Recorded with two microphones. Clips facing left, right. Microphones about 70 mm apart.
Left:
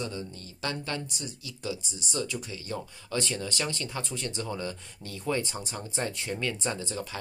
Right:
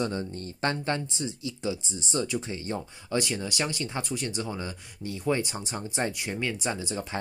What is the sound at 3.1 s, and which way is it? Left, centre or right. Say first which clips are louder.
Speech: right 3 dB; centre.